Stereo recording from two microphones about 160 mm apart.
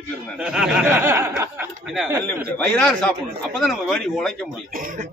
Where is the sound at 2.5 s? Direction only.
5° left (ahead or behind).